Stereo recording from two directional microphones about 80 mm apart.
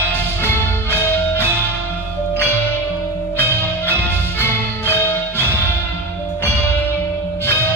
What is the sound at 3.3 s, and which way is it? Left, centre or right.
Music, left.